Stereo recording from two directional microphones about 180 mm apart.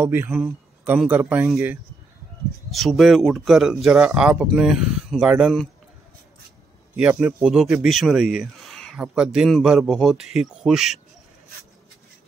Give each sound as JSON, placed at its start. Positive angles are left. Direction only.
{"t": 0.0, "sound": "speech", "side_deg": -10}
{"t": 2.7, "sound": "speech", "side_deg": 0}
{"t": 7.0, "sound": "speech", "side_deg": -10}